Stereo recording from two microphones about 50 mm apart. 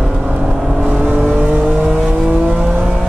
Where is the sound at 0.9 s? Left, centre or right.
Right.